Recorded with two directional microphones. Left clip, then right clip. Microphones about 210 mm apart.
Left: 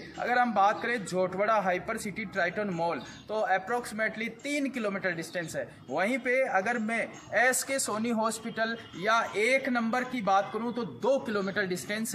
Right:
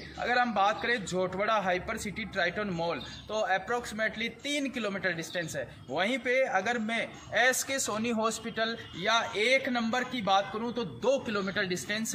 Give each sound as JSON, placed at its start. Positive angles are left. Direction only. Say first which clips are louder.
{"t": 0.2, "sound": "a man's voice", "louder": "left 2 dB", "side_deg": -5}